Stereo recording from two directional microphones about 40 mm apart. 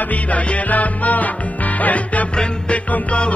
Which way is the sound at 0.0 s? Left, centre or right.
Left.